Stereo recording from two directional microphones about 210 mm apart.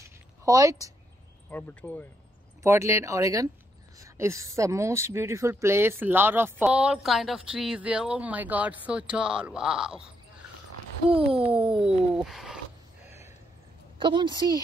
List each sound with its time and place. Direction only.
0.0 s a sound: 15° right (ahead or behind)
1.5 s speech: 5° left (ahead or behind)
2.6 s speech: 15° right (ahead or behind)
11.2 s speech: 5° right (ahead or behind)
13.9 s a woman's voice: 20° right (ahead or behind)